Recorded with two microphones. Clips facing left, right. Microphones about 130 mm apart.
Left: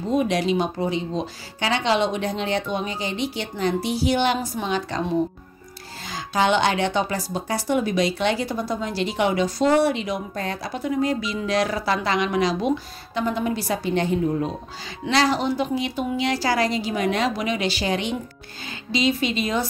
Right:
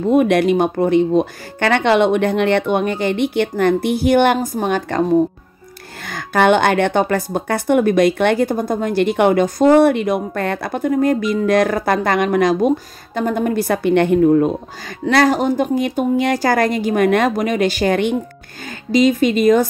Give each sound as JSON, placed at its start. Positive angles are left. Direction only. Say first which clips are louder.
{"t": 0.0, "sound": "speech", "louder": "right 8 dB", "side_deg": -60}
{"t": 6.0, "sound": "speech", "louder": "right 7 dB", "side_deg": -60}